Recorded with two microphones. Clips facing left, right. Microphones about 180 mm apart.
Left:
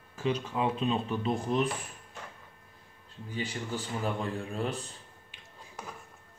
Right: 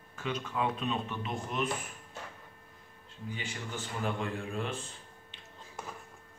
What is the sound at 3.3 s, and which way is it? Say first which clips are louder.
Speech: left 6 dB; 35° left (ahead or behind).